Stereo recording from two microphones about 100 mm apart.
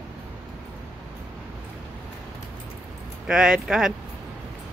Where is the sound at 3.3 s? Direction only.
10° right (ahead or behind).